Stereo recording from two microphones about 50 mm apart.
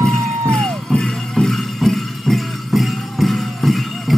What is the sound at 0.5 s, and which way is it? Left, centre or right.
Music, centre.